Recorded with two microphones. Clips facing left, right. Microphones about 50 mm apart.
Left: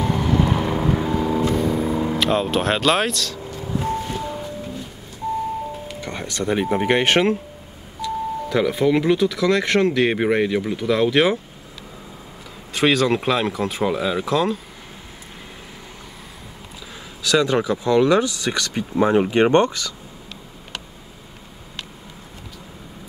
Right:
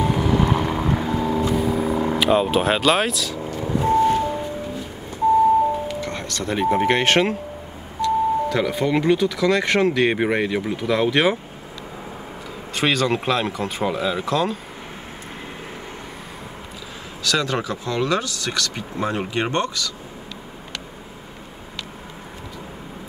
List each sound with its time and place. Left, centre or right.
0.2 s vehicle: centre
2.1 s speech: centre
3.5 s vehicle: right
5.9 s music: centre
6.6 s speech: centre
12.7 s speech: centre
17.2 s speech: centre
19.3 s speech: left